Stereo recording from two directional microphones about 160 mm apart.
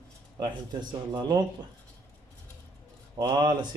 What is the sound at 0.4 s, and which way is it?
A man's voice, 25° right (ahead or behind).